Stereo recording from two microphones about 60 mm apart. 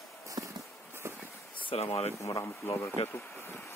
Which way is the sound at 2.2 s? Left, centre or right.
Left.